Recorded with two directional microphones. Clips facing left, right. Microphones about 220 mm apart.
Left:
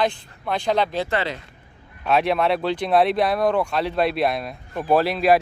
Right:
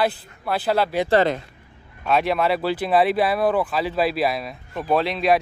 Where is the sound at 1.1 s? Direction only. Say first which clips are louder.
Right 7 dB; 45° right (ahead or behind).